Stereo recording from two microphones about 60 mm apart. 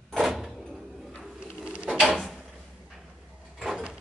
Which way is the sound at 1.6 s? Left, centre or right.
Centre.